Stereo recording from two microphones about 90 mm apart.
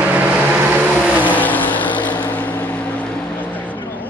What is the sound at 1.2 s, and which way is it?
Vehicle, 20° left (ahead or behind).